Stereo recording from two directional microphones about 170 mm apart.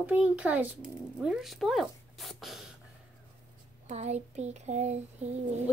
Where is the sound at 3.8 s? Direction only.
40° right (ahead or behind).